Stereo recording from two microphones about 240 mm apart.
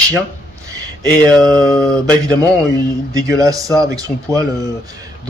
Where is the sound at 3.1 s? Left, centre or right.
Centre.